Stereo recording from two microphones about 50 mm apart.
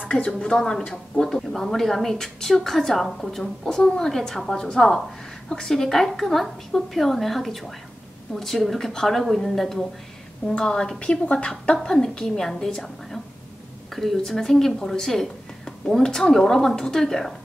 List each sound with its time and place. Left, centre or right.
0.0 s speech: left
0.4 s a woman's voice: centre